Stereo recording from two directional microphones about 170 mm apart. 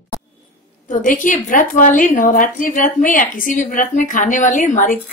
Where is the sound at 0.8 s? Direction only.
50° left (ahead or behind).